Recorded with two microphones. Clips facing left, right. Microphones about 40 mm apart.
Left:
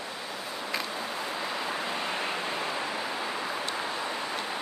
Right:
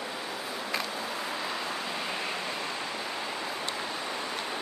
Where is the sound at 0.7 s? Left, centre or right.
Centre.